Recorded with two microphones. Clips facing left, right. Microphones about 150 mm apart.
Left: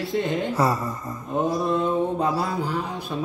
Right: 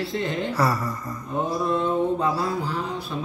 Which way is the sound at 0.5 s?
20° left (ahead or behind).